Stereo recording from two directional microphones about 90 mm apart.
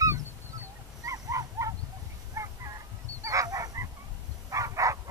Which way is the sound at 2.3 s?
35° right (ahead or behind).